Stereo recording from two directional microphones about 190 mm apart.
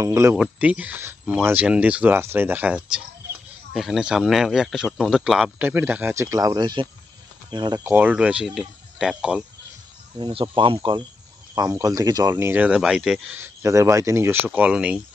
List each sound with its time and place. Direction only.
0.0 s speech: 15° right (ahead or behind)
10.1 s speech: 25° right (ahead or behind); by 15.0 s 5° right (ahead or behind)